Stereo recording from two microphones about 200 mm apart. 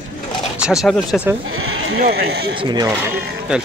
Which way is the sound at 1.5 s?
90° right.